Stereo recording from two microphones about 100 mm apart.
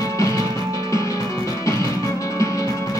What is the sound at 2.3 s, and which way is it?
Music, 30° left (ahead or behind).